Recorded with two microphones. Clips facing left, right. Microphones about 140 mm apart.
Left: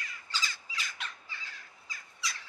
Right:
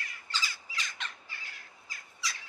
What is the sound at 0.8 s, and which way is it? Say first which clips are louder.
Bird: right 1 dB; 5° left (ahead or behind).